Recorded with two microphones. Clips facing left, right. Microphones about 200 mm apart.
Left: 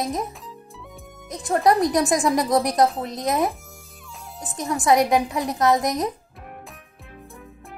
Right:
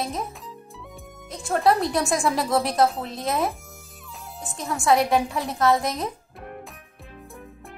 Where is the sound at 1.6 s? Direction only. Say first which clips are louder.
Left 3 dB; 15° left (ahead or behind).